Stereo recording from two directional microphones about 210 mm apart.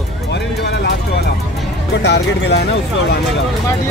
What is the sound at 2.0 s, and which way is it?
Speech, 55° left (ahead or behind).